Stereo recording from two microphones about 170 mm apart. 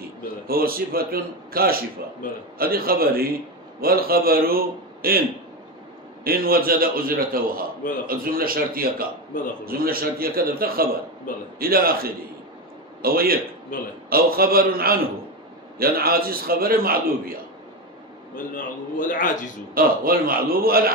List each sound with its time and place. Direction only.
0.0 s a man's voice: 60° right (ahead or behind)
6.2 s a man's voice: 60° right (ahead or behind)
18.3 s a man's voice: 50° left (ahead or behind)
19.7 s a man's voice: 60° right (ahead or behind)